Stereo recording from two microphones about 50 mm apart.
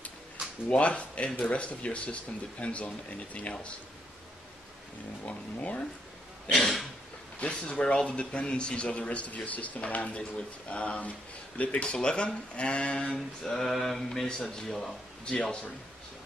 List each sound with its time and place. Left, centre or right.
0.7 s speech: left
5.2 s speech: left
6.5 s throat clearing: centre
7.3 s speech: left
13.6 s speech: centre